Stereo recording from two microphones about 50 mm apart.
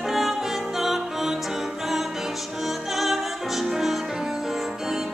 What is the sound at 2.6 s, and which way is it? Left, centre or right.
Opera, centre.